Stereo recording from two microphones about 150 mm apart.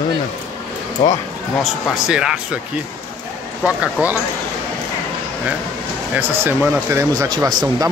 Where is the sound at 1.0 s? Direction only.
35° left (ahead or behind).